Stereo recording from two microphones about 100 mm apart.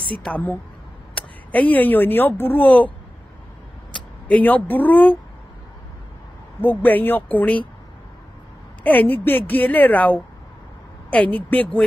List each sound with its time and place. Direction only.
0.2 s a woman's voice: 15° left (ahead or behind)
4.3 s a woman's voice: 15° left (ahead or behind)
6.6 s speech: 20° left (ahead or behind)
8.8 s a woman's voice: 15° left (ahead or behind)
11.3 s a woman's voice: 15° left (ahead or behind)